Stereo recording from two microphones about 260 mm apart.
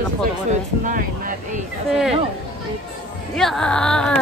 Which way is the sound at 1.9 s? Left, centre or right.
Centre.